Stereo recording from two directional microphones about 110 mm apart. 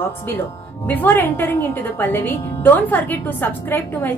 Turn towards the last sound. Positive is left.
turn(degrees=20)  # may be behind; listen again after turning